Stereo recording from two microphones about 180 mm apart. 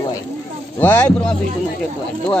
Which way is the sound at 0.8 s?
10° left (ahead or behind).